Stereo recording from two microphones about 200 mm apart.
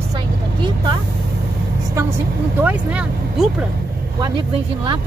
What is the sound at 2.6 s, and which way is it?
Speech, 5° right (ahead or behind).